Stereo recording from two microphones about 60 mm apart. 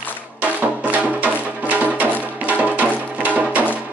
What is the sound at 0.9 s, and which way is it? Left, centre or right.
Music, right.